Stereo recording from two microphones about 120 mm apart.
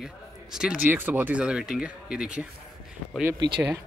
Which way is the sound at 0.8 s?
15° right (ahead or behind).